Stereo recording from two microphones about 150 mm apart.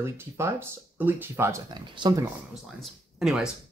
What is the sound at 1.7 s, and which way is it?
Speech, 30° right (ahead or behind).